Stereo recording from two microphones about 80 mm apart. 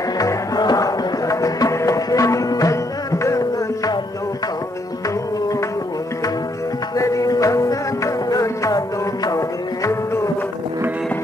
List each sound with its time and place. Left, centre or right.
0.2 s music: left
7.0 s music: left
9.8 s music: left